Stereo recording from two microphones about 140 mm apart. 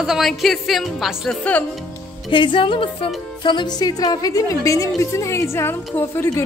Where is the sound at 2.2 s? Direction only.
35° left (ahead or behind).